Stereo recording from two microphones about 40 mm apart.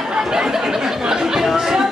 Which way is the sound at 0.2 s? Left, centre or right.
Centre.